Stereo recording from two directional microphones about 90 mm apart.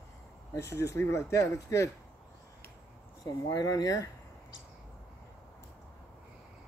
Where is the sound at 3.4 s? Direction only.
45° left (ahead or behind).